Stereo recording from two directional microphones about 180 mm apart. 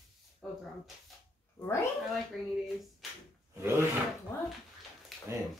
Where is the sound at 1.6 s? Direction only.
15° left (ahead or behind).